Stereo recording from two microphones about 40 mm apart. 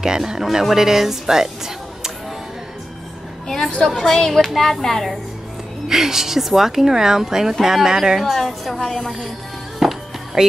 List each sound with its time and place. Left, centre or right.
0.0 s speech: centre
3.4 s a sound: centre
4.0 s a woman's voice: centre
5.9 s a woman's voice: centre
9.8 s music: centre